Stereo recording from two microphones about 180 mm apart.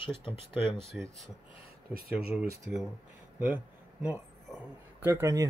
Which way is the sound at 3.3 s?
10° right (ahead or behind).